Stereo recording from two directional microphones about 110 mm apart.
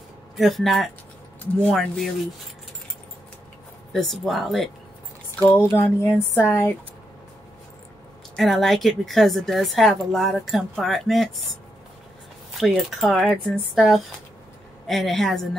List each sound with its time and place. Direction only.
0.4 s a woman's voice: centre (ahead or behind)
3.9 s a woman's voice: centre (ahead or behind)
5.5 s a sound: 20° left (ahead or behind)
8.4 s a woman's voice: centre (ahead or behind)
12.5 s a woman's voice: centre (ahead or behind)